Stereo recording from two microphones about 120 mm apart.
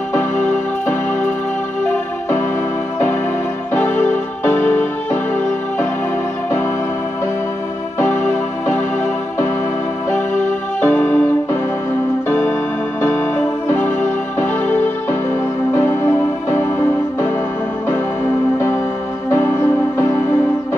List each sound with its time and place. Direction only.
4.5 s music: 15° left (ahead or behind)
10.8 s music: 15° left (ahead or behind)
12.3 s music: 15° left (ahead or behind)